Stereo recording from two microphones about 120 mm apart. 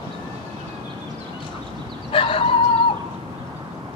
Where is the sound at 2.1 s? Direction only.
50° left (ahead or behind).